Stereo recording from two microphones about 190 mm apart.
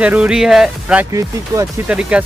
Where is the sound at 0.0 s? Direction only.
5° right (ahead or behind).